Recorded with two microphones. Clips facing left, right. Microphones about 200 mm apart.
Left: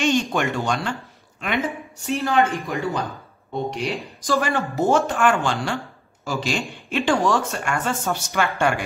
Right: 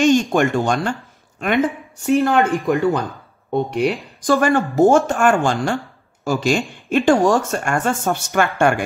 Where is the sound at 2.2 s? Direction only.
55° right (ahead or behind).